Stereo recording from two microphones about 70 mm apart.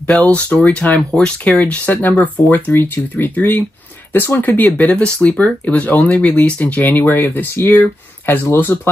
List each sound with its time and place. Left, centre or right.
0.0 s speech: centre